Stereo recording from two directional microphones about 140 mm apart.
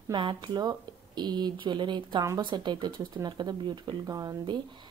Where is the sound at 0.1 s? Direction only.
35° right (ahead or behind).